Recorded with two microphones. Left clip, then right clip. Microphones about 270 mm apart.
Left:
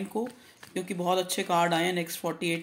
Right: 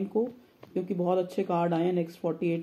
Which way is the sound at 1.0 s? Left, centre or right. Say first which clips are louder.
Left 1 dB; centre.